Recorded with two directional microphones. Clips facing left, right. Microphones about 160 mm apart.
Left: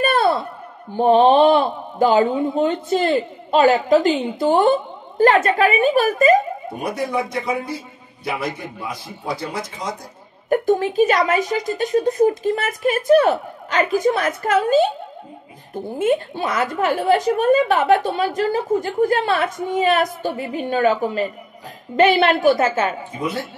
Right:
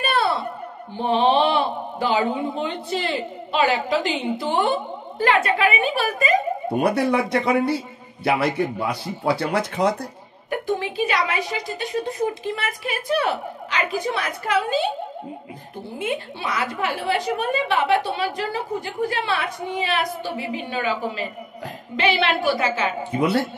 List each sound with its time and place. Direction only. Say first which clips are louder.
0.0 s a sound: left 5 dB; 45° left (ahead or behind)
0.9 s a woman's voice: left 6 dB; 45° left (ahead or behind)
6.8 s a man's voice: right 3 dB; 70° right (ahead or behind)
10.5 s a woman's voice: left 7 dB; 45° left (ahead or behind)
16.0 s a woman's voice: left 8 dB; 45° left (ahead or behind)
23.1 s a man's voice: right 5 dB; 70° right (ahead or behind)